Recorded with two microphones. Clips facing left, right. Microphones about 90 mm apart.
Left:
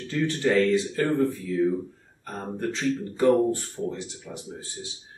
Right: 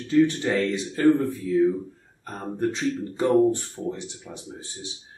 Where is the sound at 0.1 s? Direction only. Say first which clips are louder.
Right 3 dB; 20° right (ahead or behind).